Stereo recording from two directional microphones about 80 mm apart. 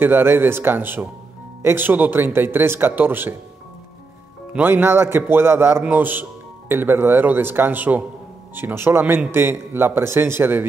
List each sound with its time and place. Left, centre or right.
0.0 s speech: right
4.6 s speech: right